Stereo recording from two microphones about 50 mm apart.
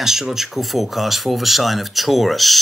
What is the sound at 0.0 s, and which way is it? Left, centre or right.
Speech, centre.